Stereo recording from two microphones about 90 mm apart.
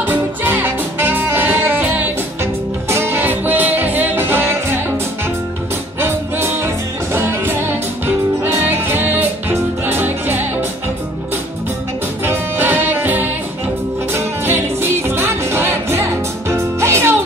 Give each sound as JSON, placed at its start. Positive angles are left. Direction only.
{"t": 0.0, "sound": "music", "side_deg": -20}
{"t": 5.9, "sound": "music", "side_deg": -25}
{"t": 12.3, "sound": "music", "side_deg": -20}